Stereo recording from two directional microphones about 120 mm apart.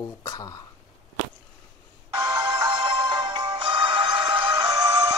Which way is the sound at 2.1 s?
35° right (ahead or behind).